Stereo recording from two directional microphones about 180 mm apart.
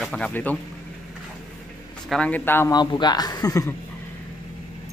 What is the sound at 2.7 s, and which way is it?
Speech, 25° left (ahead or behind).